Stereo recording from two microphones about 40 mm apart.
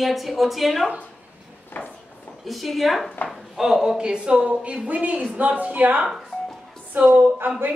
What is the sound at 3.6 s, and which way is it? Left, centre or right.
A woman's voice, centre.